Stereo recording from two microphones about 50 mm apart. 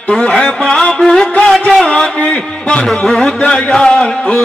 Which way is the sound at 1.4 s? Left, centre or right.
Centre.